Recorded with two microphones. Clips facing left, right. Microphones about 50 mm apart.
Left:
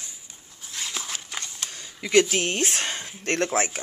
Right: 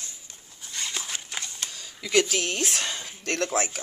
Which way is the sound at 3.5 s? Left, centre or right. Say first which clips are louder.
Left 2 dB; left.